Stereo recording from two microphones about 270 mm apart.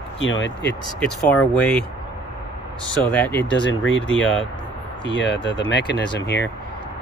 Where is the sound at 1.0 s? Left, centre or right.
Centre.